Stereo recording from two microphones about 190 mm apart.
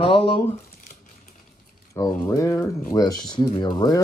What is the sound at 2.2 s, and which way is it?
Speech, 15° left (ahead or behind).